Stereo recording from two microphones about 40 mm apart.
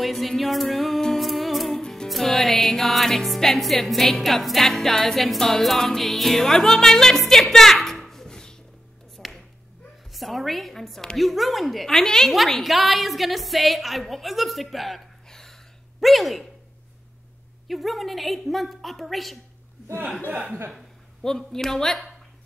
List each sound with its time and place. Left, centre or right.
0.0 s music: centre
1.0 s humming: centre
1.8 s music: centre
2.0 s music: centre
3.1 s speech: centre
9.1 s finger snapping: centre
10.1 s a sound: centre
11.1 s a woman's voice: centre
12.6 s a woman's voice: centre
15.2 s a sound: centre
16.0 s speech: centre
17.6 s a woman's voice: centre
20.2 s chuckle: right
21.2 s speech: centre